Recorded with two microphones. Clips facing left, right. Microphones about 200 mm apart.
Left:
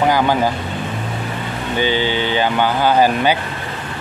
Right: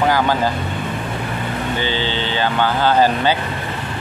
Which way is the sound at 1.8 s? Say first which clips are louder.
Left 8 dB; 15° left (ahead or behind).